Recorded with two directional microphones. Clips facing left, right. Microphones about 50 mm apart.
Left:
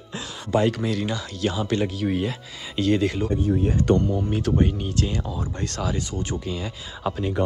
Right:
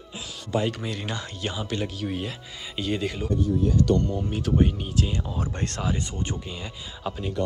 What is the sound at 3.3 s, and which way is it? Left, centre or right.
Speech, left.